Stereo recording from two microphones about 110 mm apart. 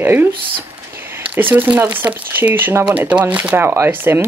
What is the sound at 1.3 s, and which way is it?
Speech, 15° right (ahead or behind).